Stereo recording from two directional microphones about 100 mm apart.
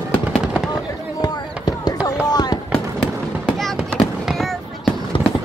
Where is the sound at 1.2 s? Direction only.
40° left (ahead or behind).